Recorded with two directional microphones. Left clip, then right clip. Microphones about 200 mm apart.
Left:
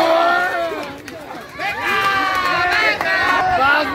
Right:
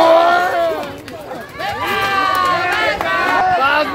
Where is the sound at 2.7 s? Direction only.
15° left (ahead or behind).